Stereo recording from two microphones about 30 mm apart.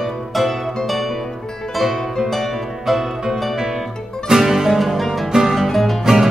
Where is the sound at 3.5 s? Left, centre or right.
Centre.